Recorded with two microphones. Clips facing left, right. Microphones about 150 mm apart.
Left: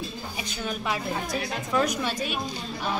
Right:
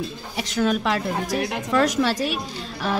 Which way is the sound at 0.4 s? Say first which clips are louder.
Right 11 dB; 90° right.